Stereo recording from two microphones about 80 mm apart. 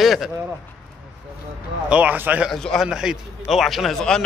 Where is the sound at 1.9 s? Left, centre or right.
Centre.